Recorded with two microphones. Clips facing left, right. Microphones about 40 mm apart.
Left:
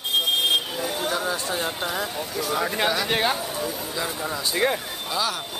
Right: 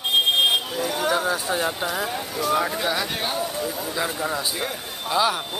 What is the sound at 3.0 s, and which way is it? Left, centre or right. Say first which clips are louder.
Speech: left 5 dB; left.